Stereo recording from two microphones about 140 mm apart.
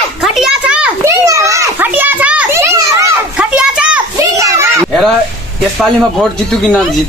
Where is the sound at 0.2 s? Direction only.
5° right (ahead or behind).